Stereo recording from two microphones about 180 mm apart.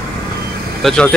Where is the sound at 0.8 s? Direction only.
5° left (ahead or behind).